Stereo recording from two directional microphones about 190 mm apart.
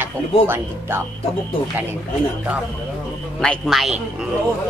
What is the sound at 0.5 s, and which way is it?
Speech, 10° right (ahead or behind).